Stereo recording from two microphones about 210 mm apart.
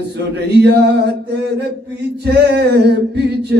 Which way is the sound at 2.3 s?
50° right (ahead or behind).